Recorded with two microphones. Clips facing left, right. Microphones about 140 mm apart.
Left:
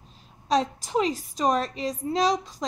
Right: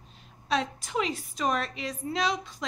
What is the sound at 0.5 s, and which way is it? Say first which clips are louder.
A woman's voice: left 5 dB; 35° left (ahead or behind).